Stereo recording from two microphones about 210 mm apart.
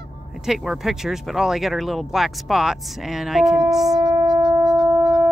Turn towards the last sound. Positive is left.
turn(degrees=-15)  # may be behind; listen again after turning